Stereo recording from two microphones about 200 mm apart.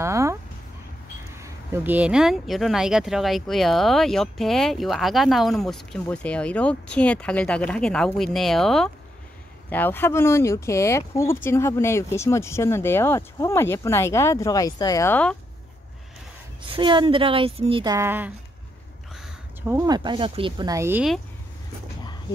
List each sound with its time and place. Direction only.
0.0 s a sound: 15° right (ahead or behind)
1.4 s speech: 10° right (ahead or behind); by 15.3 s 10° left (ahead or behind)
16.6 s a woman's voice: 25° right (ahead or behind)
17.9 s speech: 10° right (ahead or behind)
19.7 s a woman's voice: 20° right (ahead or behind)